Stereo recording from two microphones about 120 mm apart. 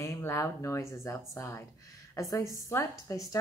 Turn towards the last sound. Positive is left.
turn(degrees=25)  # may be behind; listen again after turning